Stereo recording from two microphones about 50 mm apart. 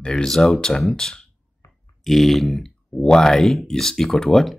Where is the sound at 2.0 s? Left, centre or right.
Centre.